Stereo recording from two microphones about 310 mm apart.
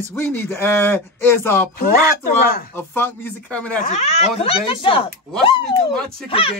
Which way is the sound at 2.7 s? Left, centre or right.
Centre.